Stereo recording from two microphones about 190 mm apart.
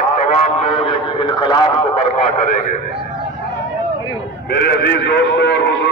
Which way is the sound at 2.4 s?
40° left (ahead or behind).